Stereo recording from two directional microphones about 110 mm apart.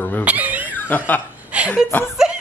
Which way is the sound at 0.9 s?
15° left (ahead or behind).